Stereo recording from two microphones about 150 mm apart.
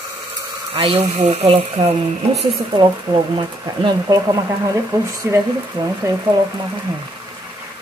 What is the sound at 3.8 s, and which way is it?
Speech, 25° right (ahead or behind).